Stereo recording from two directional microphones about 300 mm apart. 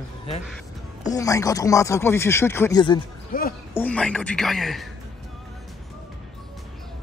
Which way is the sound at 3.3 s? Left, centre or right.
Left.